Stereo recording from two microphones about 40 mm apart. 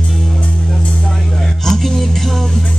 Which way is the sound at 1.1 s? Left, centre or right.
Centre.